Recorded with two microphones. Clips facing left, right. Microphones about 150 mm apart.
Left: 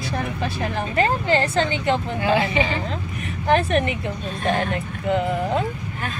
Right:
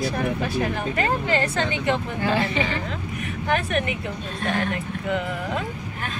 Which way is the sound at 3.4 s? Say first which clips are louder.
Left 5 dB; 30° left (ahead or behind).